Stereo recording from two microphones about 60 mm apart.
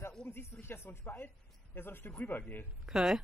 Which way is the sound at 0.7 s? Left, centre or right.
Left.